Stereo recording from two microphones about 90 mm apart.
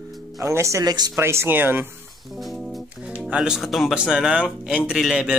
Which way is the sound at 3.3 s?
10° right (ahead or behind).